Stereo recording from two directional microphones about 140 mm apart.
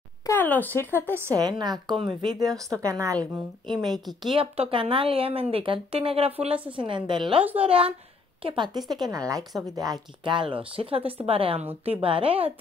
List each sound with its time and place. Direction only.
0.3 s speech: 15° left (ahead or behind)
0.9 s a woman's voice: 15° right (ahead or behind)
1.4 s speech: 30° right (ahead or behind)
7.4 s a woman's voice: 10° right (ahead or behind)
8.5 s speech: 30° right (ahead or behind)
10.2 s speech: 35° right (ahead or behind)